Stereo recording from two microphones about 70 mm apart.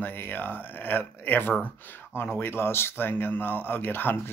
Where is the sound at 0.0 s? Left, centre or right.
Left.